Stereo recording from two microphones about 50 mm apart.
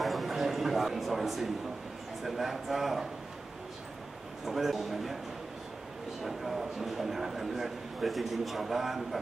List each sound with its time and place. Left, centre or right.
0.0 s a sound: centre
2.2 s a man's voice: centre
4.5 s a man's voice: centre
6.2 s a man's voice: centre